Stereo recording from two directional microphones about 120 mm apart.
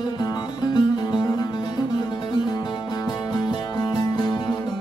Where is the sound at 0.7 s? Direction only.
35° left (ahead or behind).